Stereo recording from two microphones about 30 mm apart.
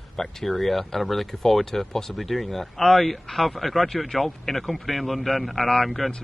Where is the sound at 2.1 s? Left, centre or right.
Centre.